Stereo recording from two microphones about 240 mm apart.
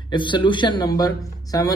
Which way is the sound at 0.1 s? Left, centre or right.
Centre.